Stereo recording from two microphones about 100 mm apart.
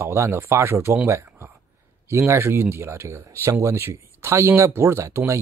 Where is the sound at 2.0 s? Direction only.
25° right (ahead or behind).